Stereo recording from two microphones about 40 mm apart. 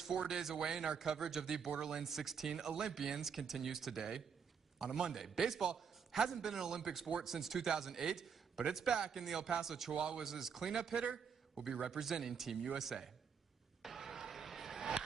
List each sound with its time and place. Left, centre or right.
0.3 s a man's voice: centre
10.7 s a man's voice: centre
13.8 s a sound: centre